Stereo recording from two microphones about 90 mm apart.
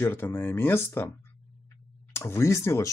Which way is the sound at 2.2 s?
30° left (ahead or behind).